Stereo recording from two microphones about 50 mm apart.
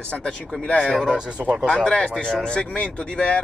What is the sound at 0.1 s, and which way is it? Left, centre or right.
Speech, centre.